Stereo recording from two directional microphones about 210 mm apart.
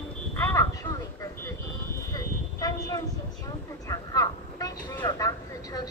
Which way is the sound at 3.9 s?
15° left (ahead or behind).